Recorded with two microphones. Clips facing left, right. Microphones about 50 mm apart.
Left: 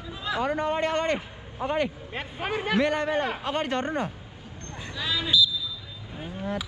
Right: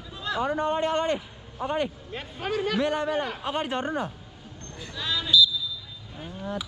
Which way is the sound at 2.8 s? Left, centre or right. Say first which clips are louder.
Left 1 dB; left.